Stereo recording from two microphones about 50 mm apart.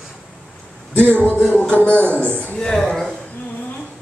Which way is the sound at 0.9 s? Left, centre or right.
Left.